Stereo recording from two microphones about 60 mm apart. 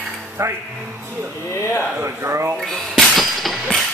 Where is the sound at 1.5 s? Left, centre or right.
Left.